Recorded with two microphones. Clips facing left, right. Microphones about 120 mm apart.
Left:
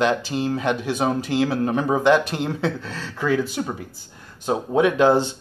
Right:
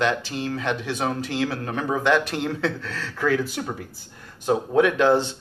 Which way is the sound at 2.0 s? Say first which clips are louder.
Left 2 dB; 5° left (ahead or behind).